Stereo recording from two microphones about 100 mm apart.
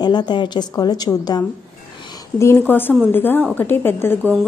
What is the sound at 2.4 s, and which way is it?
A woman's voice, 25° left (ahead or behind).